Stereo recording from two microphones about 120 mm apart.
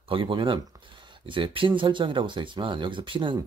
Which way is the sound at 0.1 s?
45° right (ahead or behind).